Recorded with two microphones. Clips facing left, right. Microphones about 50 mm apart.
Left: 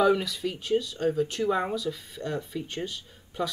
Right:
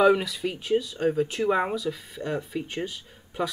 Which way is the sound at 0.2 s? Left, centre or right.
Centre.